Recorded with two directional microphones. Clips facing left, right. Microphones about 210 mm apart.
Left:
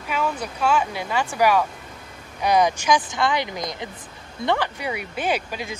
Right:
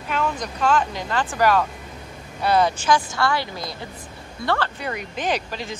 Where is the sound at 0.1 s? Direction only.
5° left (ahead or behind).